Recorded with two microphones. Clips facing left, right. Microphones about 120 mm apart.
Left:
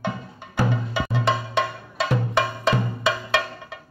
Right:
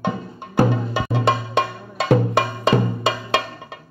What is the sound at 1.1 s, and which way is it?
Music, 50° right (ahead or behind).